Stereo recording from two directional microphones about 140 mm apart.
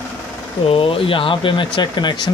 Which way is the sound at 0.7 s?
40° left (ahead or behind).